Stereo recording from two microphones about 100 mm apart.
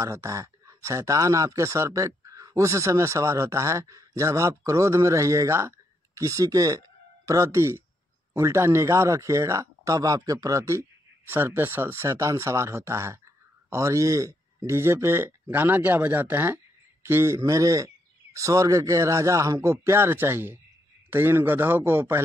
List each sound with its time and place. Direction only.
0.0 s a man's voice: 30° right (ahead or behind)